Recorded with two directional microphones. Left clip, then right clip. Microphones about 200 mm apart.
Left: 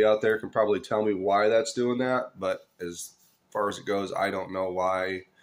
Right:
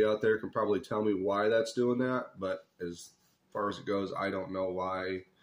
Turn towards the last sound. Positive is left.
turn(degrees=-10)  # may be behind; listen again after turning